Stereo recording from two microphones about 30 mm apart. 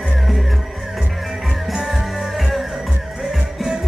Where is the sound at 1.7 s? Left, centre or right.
Centre.